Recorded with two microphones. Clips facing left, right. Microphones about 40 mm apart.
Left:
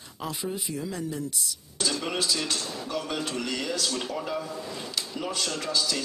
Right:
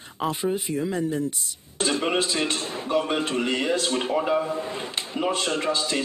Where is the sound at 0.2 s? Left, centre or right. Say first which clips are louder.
Right 7 dB; right.